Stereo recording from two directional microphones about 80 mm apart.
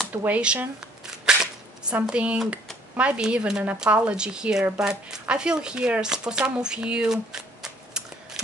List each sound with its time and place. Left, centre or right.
0.1 s speech: centre
1.2 s cap gun: centre
2.0 s speech: centre